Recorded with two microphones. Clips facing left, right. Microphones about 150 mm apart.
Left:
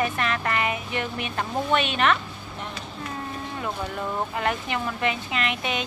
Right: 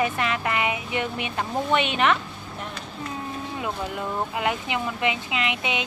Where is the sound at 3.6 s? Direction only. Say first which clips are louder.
Even; 15° right (ahead or behind).